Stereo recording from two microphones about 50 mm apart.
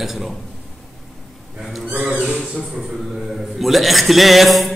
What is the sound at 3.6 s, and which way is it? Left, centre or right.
A man's voice, centre.